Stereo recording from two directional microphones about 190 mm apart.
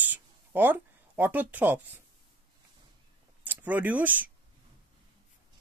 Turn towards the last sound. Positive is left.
turn(degrees=-10)  # may be behind; listen again after turning